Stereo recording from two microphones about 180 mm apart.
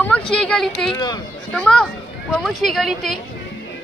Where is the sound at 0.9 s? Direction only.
25° left (ahead or behind).